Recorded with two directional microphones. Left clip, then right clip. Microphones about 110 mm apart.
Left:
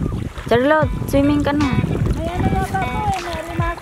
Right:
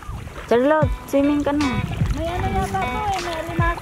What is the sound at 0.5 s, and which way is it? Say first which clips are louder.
Speech: left 2 dB; 15° left (ahead or behind).